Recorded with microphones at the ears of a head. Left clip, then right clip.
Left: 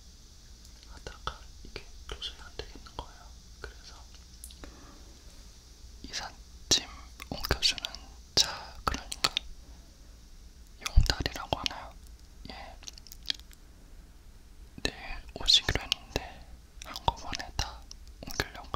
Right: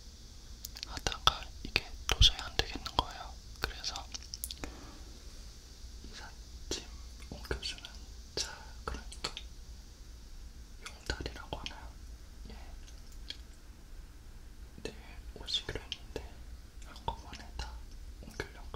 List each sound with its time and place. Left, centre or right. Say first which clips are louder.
0.6 s whispering: right 12 dB; right
6.0 s whispering: left 11 dB; left
10.8 s whispering: left 9 dB; left
14.8 s whispering: left 10 dB; left